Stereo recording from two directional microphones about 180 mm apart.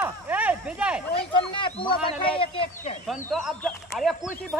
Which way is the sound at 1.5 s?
25° left (ahead or behind).